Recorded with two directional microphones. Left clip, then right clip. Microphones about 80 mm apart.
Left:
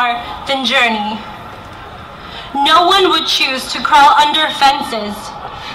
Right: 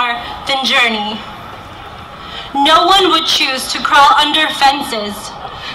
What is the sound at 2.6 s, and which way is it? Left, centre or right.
A woman's voice, right.